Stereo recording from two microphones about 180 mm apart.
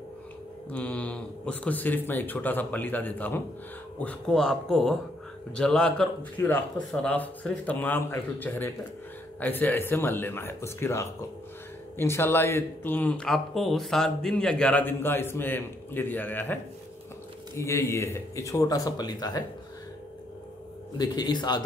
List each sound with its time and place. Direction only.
0.7 s speech: 5° left (ahead or behind)
17.6 s speech: 15° left (ahead or behind)
21.0 s a man's voice: 25° left (ahead or behind)